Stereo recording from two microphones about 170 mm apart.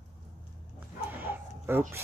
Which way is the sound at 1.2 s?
10° right (ahead or behind).